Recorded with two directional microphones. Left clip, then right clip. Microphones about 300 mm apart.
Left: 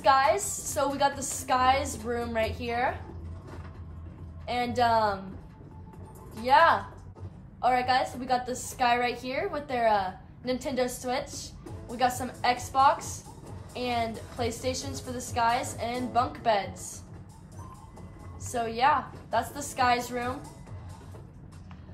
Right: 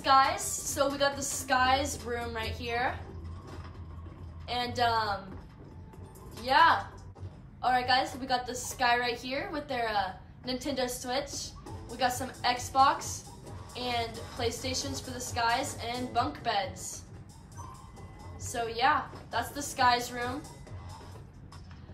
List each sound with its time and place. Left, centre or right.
0.0 s a woman's voice: centre
4.5 s a woman's voice: centre
6.4 s a woman's voice: centre
18.5 s a woman's voice: centre